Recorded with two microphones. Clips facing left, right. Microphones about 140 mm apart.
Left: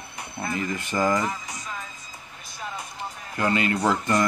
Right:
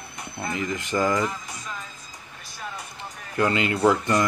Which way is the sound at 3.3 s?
20° right (ahead or behind).